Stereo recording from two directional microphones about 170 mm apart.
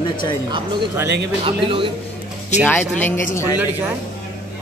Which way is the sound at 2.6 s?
10° left (ahead or behind).